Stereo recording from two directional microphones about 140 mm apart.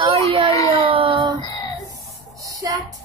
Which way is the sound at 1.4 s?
25° left (ahead or behind).